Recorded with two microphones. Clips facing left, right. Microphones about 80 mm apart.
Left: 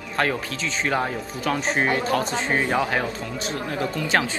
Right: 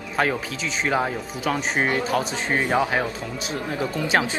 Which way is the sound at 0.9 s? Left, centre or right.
Centre.